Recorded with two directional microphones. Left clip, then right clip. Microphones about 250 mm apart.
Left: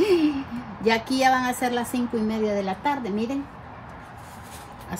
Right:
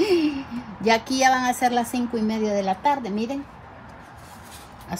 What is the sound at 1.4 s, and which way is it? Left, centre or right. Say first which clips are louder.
Speech: right 3 dB; right.